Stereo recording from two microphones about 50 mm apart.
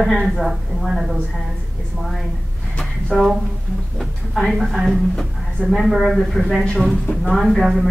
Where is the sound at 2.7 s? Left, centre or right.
Left.